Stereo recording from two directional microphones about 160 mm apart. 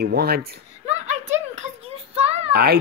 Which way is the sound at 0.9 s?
45° right (ahead or behind).